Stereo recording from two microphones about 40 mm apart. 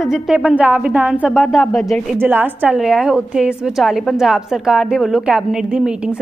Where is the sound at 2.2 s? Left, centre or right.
Right.